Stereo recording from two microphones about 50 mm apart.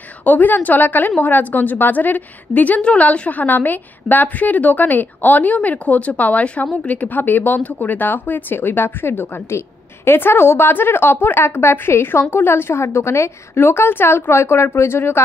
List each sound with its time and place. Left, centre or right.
0.2 s a woman's voice: left